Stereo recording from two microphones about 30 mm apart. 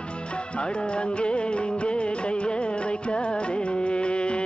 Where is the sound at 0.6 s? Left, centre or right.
Left.